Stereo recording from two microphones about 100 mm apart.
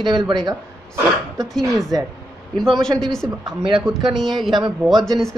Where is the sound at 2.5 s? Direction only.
5° left (ahead or behind).